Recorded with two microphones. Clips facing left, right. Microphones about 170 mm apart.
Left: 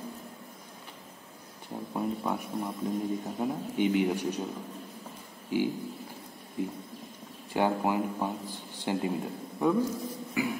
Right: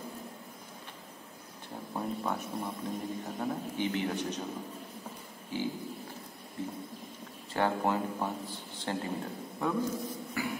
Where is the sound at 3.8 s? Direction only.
15° left (ahead or behind).